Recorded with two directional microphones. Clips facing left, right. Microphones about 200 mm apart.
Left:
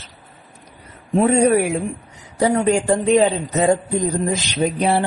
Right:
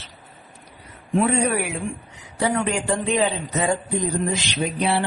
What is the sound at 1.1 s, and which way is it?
A man's voice, 35° left (ahead or behind).